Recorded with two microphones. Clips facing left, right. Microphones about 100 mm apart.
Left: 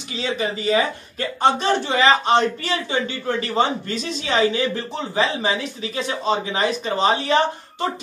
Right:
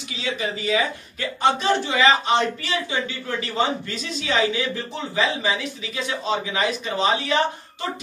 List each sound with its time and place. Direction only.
0.2 s speech: 40° left (ahead or behind)